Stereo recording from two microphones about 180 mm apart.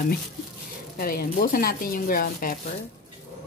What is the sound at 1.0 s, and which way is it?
A woman's voice, 55° left (ahead or behind).